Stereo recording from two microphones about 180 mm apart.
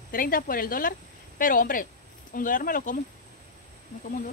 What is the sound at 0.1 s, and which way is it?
A woman's voice, 50° left (ahead or behind).